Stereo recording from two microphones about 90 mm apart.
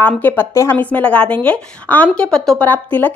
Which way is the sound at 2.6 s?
20° left (ahead or behind).